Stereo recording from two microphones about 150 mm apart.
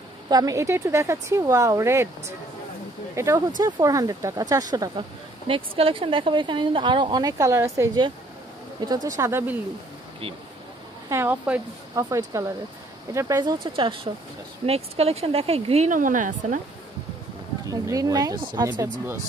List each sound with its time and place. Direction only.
0.3 s speech: 25° right (ahead or behind)
5.5 s speech: 35° right (ahead or behind); by 9.6 s 15° right (ahead or behind)
11.1 s speech: 15° right (ahead or behind)
11.9 s speech: 25° right (ahead or behind); by 16.5 s 60° right (ahead or behind)
17.6 s speech: 25° right (ahead or behind)